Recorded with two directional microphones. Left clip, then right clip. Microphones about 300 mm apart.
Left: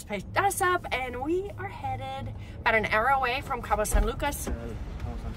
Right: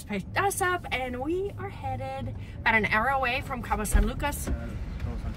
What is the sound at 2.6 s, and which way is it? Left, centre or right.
Speech, centre.